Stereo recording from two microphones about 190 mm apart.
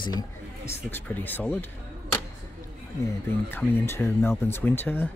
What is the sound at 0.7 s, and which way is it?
Speech, 10° left (ahead or behind).